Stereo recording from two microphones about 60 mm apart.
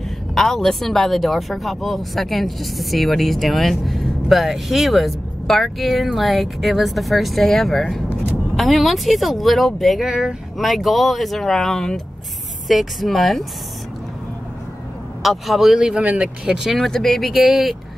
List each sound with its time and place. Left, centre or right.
0.3 s speech: centre
15.2 s speech: centre
15.8 s speech: right
16.7 s speech: centre